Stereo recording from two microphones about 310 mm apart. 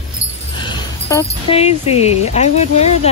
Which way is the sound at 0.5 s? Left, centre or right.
Centre.